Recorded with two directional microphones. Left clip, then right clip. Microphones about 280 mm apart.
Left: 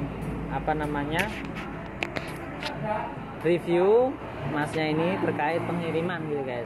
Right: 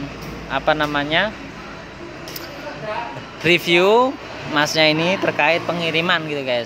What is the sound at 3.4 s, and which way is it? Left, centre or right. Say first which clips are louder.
Speech: right 8 dB; right.